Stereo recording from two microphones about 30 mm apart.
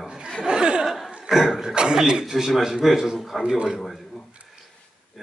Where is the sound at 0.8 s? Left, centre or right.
Centre.